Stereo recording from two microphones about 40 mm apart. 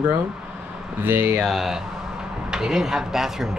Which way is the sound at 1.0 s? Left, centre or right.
Right.